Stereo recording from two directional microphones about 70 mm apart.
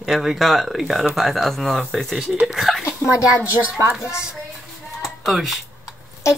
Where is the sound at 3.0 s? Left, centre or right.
Left.